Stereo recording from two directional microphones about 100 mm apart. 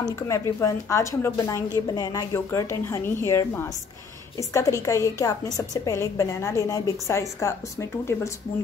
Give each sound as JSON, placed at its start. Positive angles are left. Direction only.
{"t": 0.3, "sound": "a woman's voice", "side_deg": 30}